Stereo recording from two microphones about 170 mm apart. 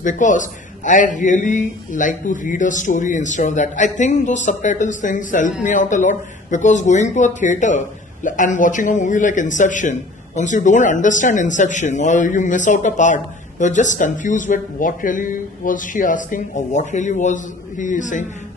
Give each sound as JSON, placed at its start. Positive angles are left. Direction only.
{"t": 0.0, "sound": "speech", "side_deg": 50}